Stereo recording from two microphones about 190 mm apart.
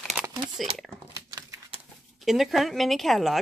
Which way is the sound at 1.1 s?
15° right (ahead or behind).